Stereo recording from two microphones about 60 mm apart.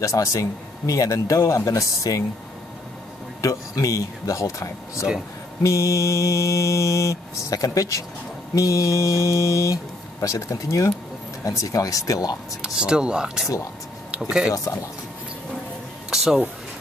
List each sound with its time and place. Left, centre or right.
0.0 s speech: left
1.4 s mantra: left
3.3 s mantra: left
11.4 s speech: left
12.6 s speech: centre
14.5 s speech: left
16.1 s speech: centre